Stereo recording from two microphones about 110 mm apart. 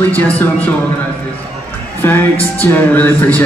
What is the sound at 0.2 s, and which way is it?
Speech, 15° left (ahead or behind).